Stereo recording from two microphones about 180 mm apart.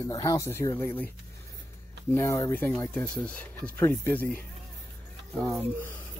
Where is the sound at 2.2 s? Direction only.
15° left (ahead or behind).